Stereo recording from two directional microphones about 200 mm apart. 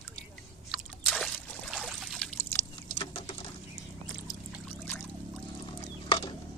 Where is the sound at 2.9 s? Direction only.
30° left (ahead or behind).